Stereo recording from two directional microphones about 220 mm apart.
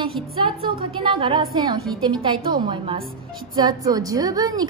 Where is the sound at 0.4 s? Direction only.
25° right (ahead or behind).